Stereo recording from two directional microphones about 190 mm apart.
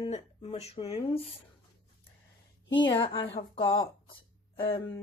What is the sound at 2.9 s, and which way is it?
Speech, 25° left (ahead or behind).